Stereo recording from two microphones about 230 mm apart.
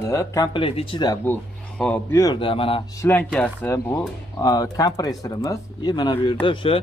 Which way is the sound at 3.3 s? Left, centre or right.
Centre.